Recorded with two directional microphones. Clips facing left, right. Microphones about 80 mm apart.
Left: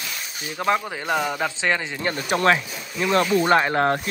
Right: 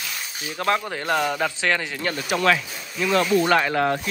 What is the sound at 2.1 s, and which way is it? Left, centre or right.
Speech, left.